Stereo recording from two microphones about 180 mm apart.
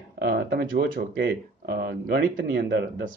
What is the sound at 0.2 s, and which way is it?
Speech, 60° right (ahead or behind).